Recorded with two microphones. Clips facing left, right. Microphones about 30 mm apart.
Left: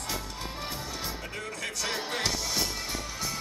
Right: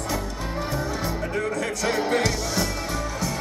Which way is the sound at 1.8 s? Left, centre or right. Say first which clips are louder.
Right 8 dB; centre.